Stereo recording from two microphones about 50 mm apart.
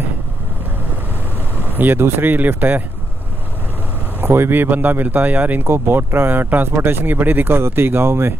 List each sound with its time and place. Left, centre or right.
1.7 s speech: right
4.2 s speech: right
5.6 s speech: right